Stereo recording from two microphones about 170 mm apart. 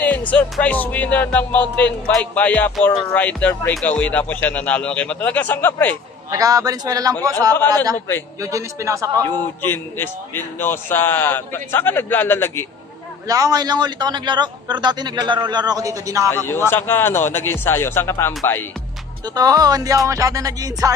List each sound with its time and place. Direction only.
0.0 s music: 10° left (ahead or behind)
6.3 s a man's voice: 20° right (ahead or behind)
9.6 s music: 15° left (ahead or behind)
13.3 s a man's voice: 20° right (ahead or behind)
16.4 s music: 15° left (ahead or behind)
19.2 s a man's voice: 20° right (ahead or behind)